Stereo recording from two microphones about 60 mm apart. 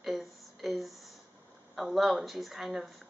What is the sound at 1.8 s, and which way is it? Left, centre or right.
Speech, centre.